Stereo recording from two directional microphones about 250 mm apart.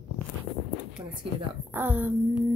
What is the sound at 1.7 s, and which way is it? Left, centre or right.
Speech, centre.